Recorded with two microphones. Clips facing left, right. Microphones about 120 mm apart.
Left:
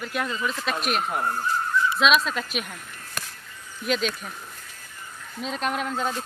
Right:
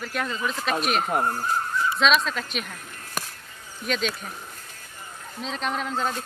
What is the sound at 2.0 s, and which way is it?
Speech, 5° left (ahead or behind).